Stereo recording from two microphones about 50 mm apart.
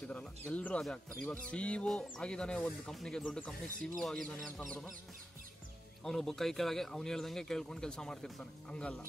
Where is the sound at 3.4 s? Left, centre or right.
Centre.